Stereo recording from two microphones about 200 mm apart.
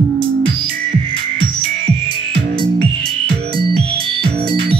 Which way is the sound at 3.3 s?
25° right (ahead or behind).